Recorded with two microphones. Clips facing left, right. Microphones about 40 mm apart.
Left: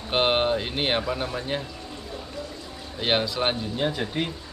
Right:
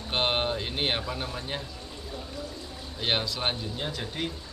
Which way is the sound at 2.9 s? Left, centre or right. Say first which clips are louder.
Left 5 dB; centre.